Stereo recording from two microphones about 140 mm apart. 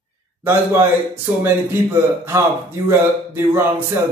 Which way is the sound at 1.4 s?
15° right (ahead or behind).